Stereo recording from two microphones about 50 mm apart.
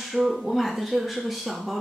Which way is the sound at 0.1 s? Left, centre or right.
Centre.